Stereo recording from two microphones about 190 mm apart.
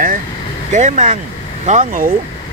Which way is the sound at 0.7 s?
35° right (ahead or behind).